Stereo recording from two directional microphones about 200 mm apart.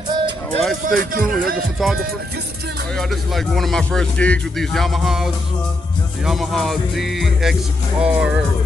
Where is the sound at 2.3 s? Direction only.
55° right (ahead or behind).